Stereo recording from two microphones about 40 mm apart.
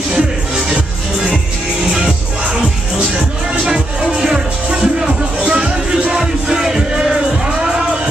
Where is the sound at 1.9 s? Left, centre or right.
Centre.